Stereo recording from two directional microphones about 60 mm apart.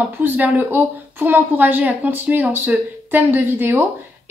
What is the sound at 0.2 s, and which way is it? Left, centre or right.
A woman's voice, right.